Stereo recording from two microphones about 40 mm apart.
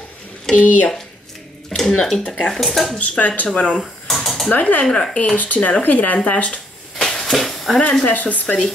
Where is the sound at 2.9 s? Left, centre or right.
Left.